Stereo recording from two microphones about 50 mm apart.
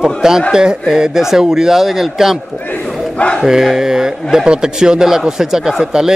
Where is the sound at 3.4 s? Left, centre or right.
Centre.